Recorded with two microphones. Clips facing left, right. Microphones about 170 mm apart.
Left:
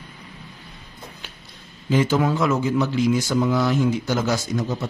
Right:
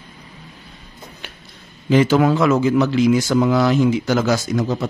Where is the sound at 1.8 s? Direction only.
85° right.